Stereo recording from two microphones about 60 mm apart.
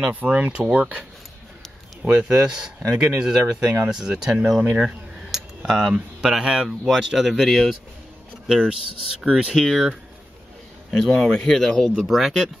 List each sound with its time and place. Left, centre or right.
0.0 s speech: right
2.0 s speech: centre
8.5 s speech: centre
9.5 s speech: centre
10.9 s speech: centre